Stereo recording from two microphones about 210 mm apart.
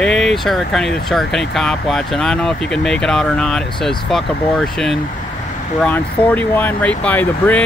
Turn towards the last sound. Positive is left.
turn(degrees=5)  # may be behind; listen again after turning